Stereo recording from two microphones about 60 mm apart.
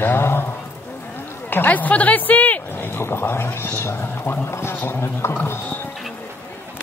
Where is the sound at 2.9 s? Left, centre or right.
Left.